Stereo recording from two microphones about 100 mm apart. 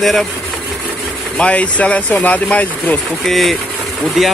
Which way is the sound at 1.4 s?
15° left (ahead or behind).